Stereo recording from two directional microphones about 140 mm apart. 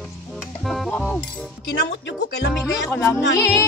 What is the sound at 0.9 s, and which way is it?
Music, 10° left (ahead or behind).